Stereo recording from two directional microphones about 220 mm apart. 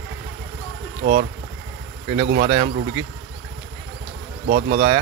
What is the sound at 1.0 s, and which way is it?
Speech, 35° right (ahead or behind).